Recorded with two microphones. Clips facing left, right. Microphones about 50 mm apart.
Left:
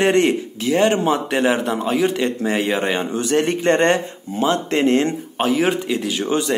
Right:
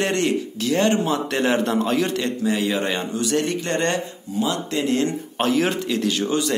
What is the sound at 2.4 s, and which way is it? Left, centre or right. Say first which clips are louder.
Speech: left 1 dB; left.